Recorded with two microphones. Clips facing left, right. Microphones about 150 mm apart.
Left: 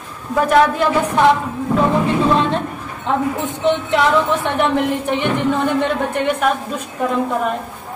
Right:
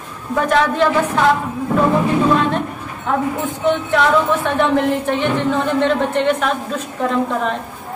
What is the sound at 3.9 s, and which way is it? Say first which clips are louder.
Speech: right 2 dB; 20° left (ahead or behind).